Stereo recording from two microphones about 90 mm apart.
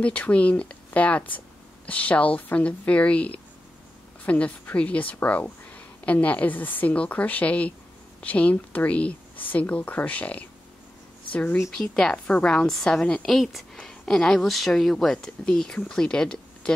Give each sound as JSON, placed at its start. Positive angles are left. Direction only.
{"t": 0.0, "sound": "a woman's voice", "side_deg": 15}
{"t": 11.6, "sound": "speech", "side_deg": 5}